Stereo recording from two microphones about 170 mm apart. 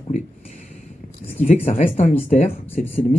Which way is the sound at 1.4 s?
50° left (ahead or behind).